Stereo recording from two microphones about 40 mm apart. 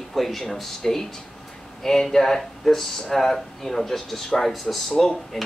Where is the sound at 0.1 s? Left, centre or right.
Centre.